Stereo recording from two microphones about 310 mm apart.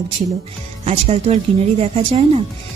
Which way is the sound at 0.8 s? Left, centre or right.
Centre.